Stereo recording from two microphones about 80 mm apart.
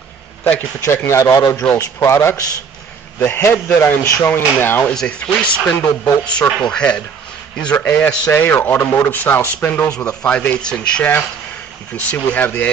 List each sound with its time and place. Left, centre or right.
0.4 s a man's voice: left
4.9 s a man's voice: centre
9.8 s a man's voice: centre